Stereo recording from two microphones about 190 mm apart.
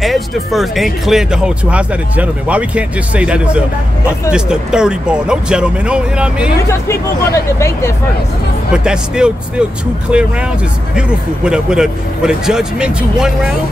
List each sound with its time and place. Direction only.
0.0 s speech: centre (ahead or behind)
6.7 s speech: 15° left (ahead or behind)
8.7 s speech: 5° right (ahead or behind)